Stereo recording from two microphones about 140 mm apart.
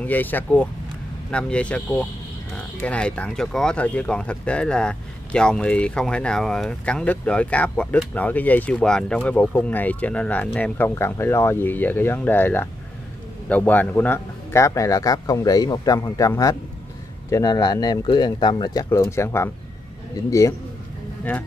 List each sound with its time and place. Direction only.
0.0 s speech: 10° left (ahead or behind); by 18.9 s 30° left (ahead or behind)
18.9 s speech: 20° left (ahead or behind)